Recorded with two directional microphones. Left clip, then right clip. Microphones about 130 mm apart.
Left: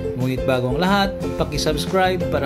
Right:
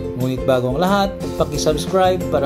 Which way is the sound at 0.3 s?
15° left (ahead or behind).